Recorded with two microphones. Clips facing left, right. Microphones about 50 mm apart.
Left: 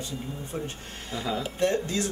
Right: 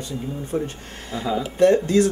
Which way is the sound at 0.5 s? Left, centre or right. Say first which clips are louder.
Right 9 dB; centre.